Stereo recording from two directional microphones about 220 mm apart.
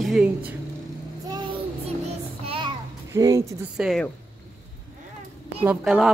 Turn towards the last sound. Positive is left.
turn(degrees=-5)  # may be behind; listen again after turning